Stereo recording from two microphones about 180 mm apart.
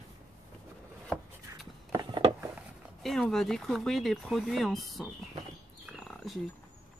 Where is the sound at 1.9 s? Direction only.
25° right (ahead or behind).